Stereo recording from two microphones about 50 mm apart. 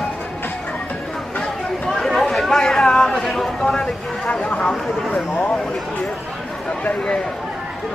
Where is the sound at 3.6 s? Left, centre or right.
Centre.